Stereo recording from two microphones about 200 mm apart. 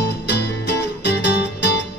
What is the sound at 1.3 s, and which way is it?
Music, 60° left (ahead or behind).